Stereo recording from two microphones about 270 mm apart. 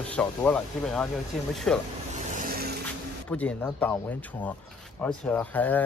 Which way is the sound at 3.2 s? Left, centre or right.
Centre.